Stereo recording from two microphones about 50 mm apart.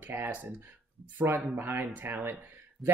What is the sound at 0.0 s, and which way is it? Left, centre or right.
Speech, right.